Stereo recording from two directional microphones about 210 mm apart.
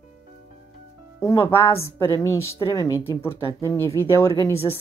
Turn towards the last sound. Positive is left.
turn(degrees=15)  # may be behind; listen again after turning